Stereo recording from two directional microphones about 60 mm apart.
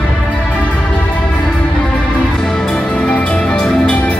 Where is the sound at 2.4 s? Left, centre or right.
Centre.